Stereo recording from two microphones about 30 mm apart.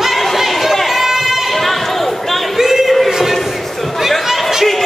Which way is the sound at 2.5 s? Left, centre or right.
Centre.